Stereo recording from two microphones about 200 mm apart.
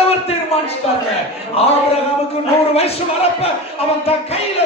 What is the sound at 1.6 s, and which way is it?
Speech, 30° left (ahead or behind).